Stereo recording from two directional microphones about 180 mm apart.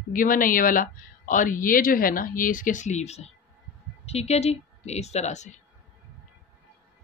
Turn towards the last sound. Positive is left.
turn(degrees=40)  # may be behind; listen again after turning